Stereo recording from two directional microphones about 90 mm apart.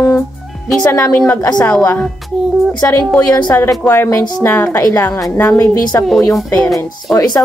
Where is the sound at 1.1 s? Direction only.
25° left (ahead or behind).